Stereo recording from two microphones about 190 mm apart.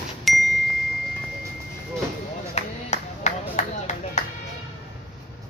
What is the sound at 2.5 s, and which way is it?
Clapping, 35° left (ahead or behind).